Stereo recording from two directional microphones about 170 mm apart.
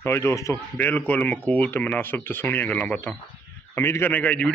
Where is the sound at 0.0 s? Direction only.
15° left (ahead or behind).